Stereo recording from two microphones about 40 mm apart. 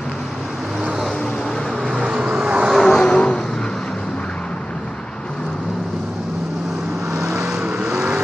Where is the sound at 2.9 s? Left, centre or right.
Centre.